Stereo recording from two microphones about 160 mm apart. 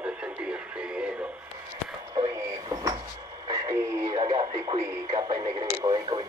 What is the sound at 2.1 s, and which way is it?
Radio, 20° right (ahead or behind).